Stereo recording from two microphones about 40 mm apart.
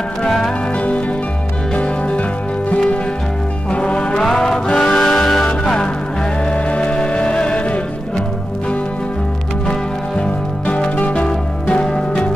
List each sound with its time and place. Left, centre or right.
1.8 s music: left
3.7 s music: left
4.2 s music: centre
6.5 s music: left
11.8 s music: centre